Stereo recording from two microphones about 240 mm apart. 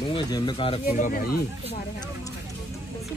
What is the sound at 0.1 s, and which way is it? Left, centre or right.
Speech, centre.